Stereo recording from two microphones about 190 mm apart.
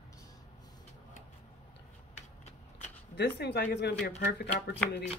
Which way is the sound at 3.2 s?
60° left (ahead or behind).